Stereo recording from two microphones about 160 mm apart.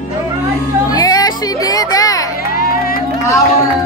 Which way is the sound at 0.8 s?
25° left (ahead or behind).